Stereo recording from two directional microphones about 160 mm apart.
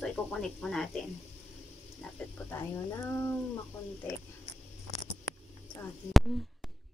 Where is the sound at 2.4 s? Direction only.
15° left (ahead or behind).